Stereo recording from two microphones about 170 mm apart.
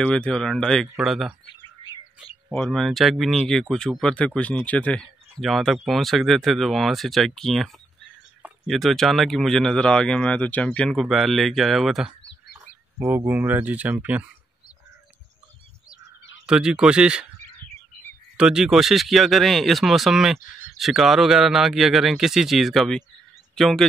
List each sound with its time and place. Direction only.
0.0 s speech: 5° left (ahead or behind)
2.5 s speech: centre (ahead or behind)
13.0 s speech: 15° right (ahead or behind)
16.4 s speech: 5° right (ahead or behind)
18.4 s speech: 5° right (ahead or behind)